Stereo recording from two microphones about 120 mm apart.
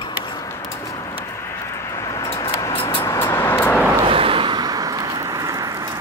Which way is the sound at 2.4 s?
30° left (ahead or behind).